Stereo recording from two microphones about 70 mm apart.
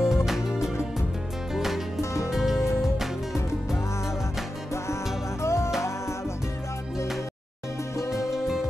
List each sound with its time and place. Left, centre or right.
0.0 s music: centre
2.0 s music: left
2.3 s music: centre
5.4 s music: left
7.9 s music: left